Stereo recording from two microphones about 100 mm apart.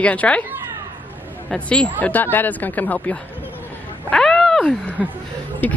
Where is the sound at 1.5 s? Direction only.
10° left (ahead or behind).